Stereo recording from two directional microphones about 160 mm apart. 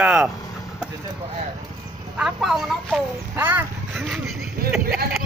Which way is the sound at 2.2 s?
Centre (ahead or behind).